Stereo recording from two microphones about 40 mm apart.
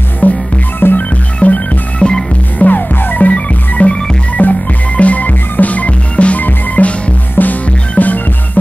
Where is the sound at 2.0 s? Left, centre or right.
Left.